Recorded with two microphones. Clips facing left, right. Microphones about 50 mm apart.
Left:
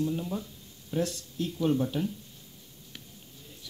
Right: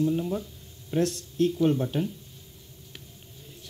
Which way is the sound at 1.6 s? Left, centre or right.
Centre.